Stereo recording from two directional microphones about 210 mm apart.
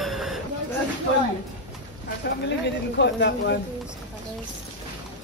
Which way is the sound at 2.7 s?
55° left (ahead or behind).